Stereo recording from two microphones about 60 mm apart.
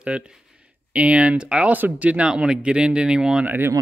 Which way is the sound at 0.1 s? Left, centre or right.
Right.